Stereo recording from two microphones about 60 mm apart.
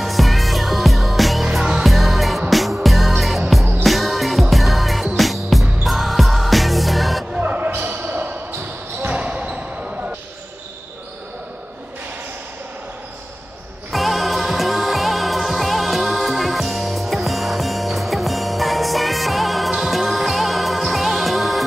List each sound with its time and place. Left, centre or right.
0.0 s music: centre
7.4 s a sound: right
9.0 s basketball bounce: right
13.9 s music: centre